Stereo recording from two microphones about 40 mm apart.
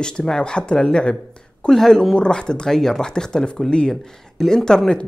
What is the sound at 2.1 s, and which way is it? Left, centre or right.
Speech, left.